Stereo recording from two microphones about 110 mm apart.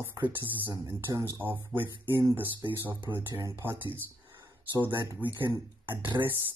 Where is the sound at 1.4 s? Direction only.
15° right (ahead or behind).